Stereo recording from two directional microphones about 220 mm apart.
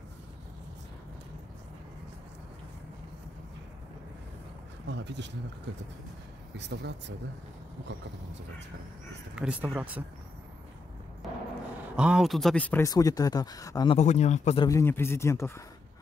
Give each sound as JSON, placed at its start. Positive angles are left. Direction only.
{"t": 4.8, "sound": "speech", "side_deg": -50}
{"t": 6.5, "sound": "speech", "side_deg": -50}
{"t": 9.3, "sound": "speech", "side_deg": -5}
{"t": 12.0, "sound": "speech", "side_deg": -5}
{"t": 13.9, "sound": "a man's voice", "side_deg": 30}
{"t": 14.7, "sound": "speech", "side_deg": 10}